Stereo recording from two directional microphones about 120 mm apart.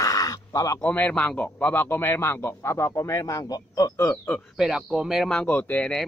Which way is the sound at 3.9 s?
15° left (ahead or behind).